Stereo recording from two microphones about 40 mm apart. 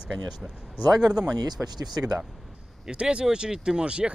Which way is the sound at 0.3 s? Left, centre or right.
Centre.